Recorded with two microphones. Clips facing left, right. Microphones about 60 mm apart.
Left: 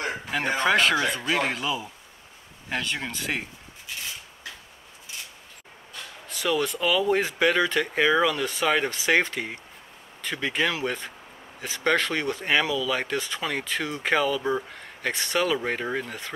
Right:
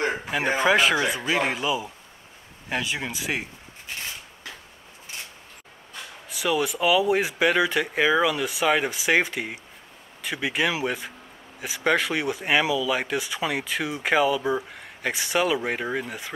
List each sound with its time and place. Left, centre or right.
0.0 s a sound: right
0.3 s speech: centre
6.2 s speech: centre